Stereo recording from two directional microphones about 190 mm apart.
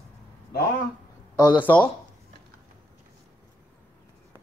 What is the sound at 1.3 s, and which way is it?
Speech, 20° left (ahead or behind).